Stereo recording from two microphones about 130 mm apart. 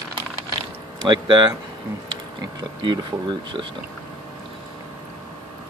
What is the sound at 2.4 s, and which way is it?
Speech, 35° right (ahead or behind).